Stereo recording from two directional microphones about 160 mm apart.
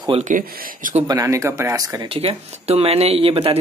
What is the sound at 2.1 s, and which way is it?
Speech, 40° right (ahead or behind).